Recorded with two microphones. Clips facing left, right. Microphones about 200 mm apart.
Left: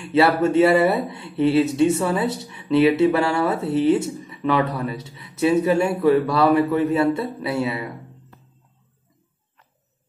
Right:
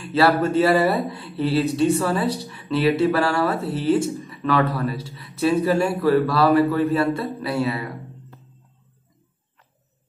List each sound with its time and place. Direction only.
0.0 s speech: 25° left (ahead or behind)